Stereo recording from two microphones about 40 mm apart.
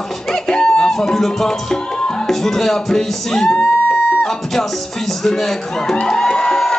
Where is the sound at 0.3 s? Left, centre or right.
Centre.